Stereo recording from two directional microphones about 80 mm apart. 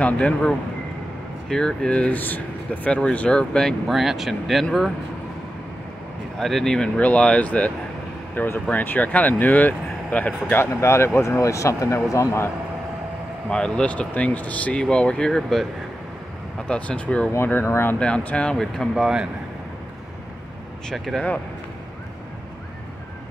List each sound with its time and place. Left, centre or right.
0.0 s speech: centre
3.8 s speech: centre
6.4 s speech: centre
10.5 s speech: left
13.5 s speech: centre
16.6 s speech: centre
17.6 s speech: left
17.9 s speech: centre
20.9 s speech: centre